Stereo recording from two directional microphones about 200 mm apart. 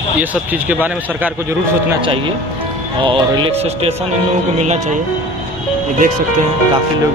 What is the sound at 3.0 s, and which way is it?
Speech, 25° right (ahead or behind).